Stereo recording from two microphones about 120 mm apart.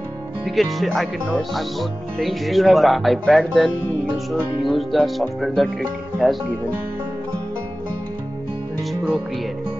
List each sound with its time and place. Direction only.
0.6 s speech: centre (ahead or behind)